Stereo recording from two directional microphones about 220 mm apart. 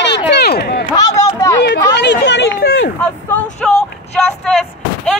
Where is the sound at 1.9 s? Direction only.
50° left (ahead or behind).